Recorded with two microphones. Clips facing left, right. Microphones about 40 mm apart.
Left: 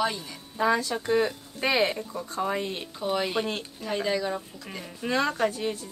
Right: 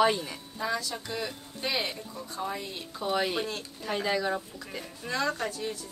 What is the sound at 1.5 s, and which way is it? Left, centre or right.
Speech, left.